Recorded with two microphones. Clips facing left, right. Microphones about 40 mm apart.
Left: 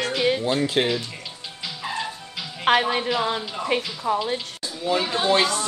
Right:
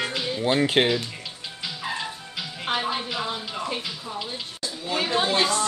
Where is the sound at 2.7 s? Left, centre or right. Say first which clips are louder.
Left 9 dB; left.